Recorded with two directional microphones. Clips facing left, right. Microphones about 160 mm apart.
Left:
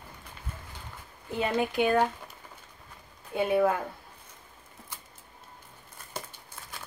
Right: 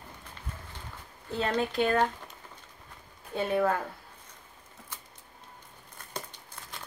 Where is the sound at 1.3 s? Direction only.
10° left (ahead or behind).